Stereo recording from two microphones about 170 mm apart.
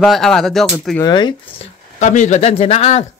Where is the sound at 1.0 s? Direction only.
25° left (ahead or behind).